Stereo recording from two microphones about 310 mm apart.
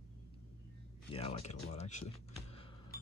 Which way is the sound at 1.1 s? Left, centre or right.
Centre.